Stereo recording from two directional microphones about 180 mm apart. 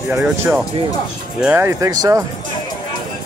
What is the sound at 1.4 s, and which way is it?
Speech, 10° right (ahead or behind).